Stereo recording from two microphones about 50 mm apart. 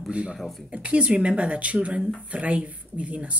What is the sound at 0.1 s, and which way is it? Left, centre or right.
A woman's voice, right.